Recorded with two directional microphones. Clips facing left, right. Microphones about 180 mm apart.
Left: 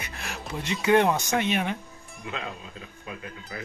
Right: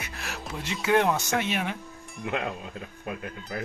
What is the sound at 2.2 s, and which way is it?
Speech, 60° right (ahead or behind).